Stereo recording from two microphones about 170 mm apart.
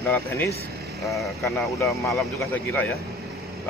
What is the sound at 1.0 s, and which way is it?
Speech, centre (ahead or behind).